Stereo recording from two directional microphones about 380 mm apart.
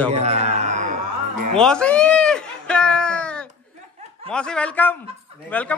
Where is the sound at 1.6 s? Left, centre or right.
Centre.